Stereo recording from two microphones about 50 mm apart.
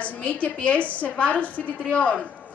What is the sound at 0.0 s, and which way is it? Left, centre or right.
A woman's voice, left.